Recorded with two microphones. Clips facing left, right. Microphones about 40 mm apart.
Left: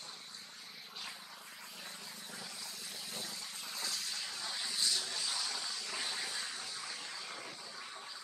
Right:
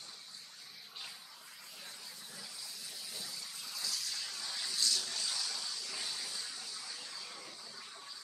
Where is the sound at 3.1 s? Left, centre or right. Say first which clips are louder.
Left 2 dB; left.